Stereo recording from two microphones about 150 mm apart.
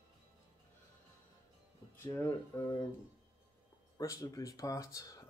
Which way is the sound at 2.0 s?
15° left (ahead or behind).